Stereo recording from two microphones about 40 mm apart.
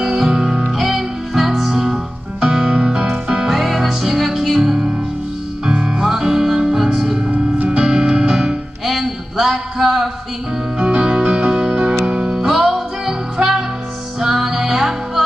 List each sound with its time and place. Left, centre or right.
0.0 s music: centre
0.7 s music: centre
3.4 s music: centre
7.2 s music: right
7.7 s music: right
8.9 s a sound: centre
10.8 s music: right